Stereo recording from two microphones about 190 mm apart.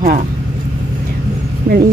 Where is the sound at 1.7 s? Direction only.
55° right (ahead or behind).